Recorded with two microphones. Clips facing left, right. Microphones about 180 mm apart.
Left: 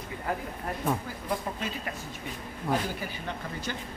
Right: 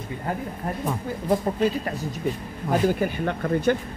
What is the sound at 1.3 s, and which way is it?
Speech, 40° right (ahead or behind).